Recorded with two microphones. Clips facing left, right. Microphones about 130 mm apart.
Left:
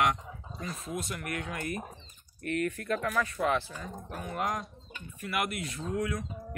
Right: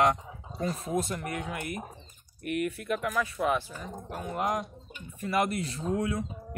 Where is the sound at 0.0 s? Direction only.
35° right (ahead or behind).